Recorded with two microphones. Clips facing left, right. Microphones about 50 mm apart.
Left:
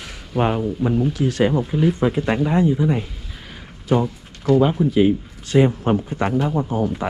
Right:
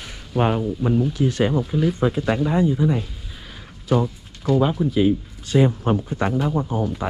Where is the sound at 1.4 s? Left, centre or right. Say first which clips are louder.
Left 4 dB; left.